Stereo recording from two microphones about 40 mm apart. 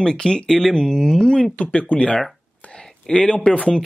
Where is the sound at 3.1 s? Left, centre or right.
Centre.